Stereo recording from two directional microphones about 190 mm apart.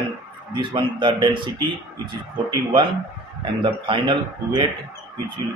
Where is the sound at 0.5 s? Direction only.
25° right (ahead or behind).